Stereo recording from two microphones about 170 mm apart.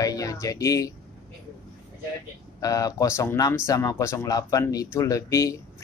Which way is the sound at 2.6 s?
20° left (ahead or behind).